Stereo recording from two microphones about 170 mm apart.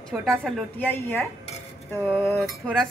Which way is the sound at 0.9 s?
15° left (ahead or behind).